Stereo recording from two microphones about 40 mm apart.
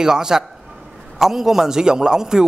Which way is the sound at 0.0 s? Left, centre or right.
Centre.